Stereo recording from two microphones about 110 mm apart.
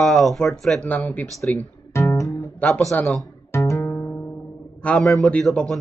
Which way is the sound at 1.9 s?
30° left (ahead or behind).